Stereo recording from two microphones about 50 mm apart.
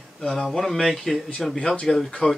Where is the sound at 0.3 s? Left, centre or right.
Centre.